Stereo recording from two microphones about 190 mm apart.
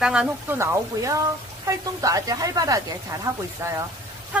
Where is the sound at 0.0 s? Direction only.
5° right (ahead or behind).